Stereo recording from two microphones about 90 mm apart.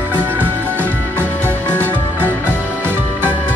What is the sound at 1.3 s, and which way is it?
Music, 20° left (ahead or behind).